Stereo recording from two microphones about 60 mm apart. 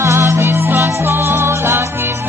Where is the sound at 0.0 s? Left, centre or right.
Right.